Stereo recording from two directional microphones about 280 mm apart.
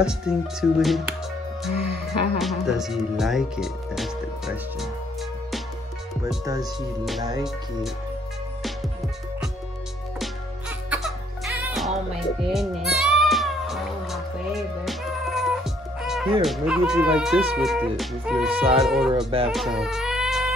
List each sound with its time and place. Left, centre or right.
0.0 s speech: centre
1.8 s speech: left
2.3 s speech: centre
6.2 s speech: centre
6.6 s speech: centre
10.9 s music: centre
14.9 s speech: centre
19.4 s baby cry: centre